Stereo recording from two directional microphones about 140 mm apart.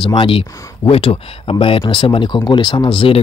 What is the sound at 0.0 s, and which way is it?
Speech, 35° left (ahead or behind).